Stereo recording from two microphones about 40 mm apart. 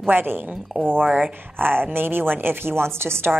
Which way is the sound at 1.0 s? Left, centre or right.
Right.